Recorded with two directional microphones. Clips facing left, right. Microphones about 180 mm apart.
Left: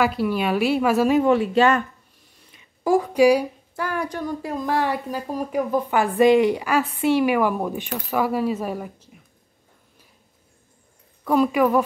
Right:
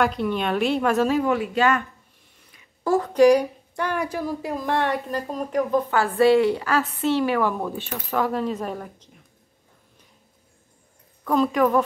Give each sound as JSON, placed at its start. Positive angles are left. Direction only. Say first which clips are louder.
{"t": 0.0, "sound": "a woman's voice", "louder": "left 1 dB", "side_deg": 5}
{"t": 1.1, "sound": "speech", "louder": "left 4 dB", "side_deg": 25}
{"t": 2.5, "sound": "a woman's voice", "louder": "left 2 dB", "side_deg": 15}
{"t": 11.2, "sound": "a woman's voice", "louder": "left 1 dB", "side_deg": 10}